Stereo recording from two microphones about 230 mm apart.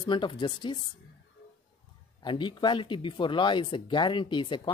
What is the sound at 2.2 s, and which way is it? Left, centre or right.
Speech, centre.